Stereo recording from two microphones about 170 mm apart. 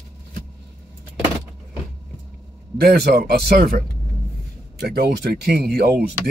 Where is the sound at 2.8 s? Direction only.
65° right (ahead or behind).